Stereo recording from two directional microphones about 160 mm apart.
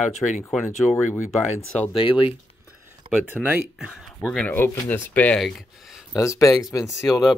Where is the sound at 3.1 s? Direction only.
10° right (ahead or behind).